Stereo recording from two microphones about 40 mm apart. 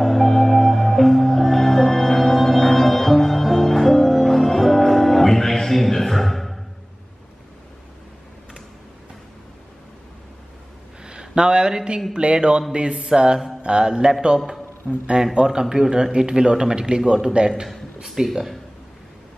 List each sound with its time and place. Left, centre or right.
0.0 s music: centre
11.1 s a sound: right
12.1 s speech: right
13.6 s mantra: right
15.2 s speech: centre
18.0 s speech: centre